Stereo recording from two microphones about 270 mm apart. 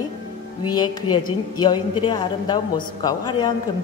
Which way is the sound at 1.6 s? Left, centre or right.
Centre.